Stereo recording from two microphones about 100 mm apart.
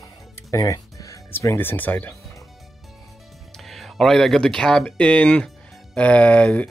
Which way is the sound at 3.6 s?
Centre (ahead or behind).